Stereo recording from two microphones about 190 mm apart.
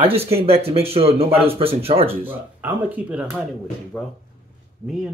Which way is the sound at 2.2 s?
10° right (ahead or behind).